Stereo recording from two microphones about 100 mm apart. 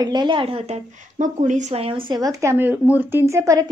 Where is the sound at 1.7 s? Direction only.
65° right (ahead or behind).